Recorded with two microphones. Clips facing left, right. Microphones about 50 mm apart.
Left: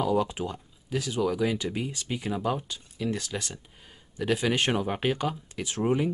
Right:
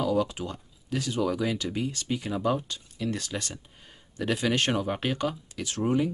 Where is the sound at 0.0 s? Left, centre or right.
Centre.